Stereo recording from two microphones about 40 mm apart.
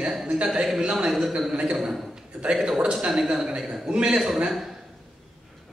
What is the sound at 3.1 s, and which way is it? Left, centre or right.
Speech, centre.